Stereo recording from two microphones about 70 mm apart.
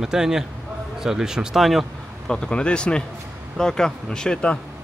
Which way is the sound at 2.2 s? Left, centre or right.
Centre.